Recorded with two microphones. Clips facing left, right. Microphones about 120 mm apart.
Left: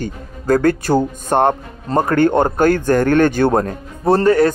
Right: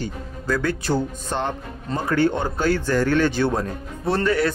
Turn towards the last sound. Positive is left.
turn(degrees=45)  # may be behind; listen again after turning